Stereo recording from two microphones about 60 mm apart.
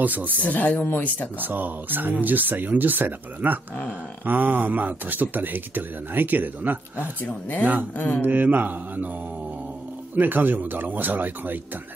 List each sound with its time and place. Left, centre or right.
0.0 s mantra: right
0.4 s speech: left
1.4 s speech: right
7.2 s speech: left
8.2 s mantra: right
10.1 s speech: right